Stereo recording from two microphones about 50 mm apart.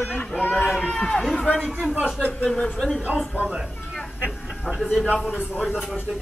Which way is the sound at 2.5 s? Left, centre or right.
Centre.